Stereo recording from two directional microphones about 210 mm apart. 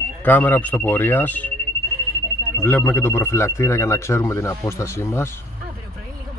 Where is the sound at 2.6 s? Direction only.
10° left (ahead or behind).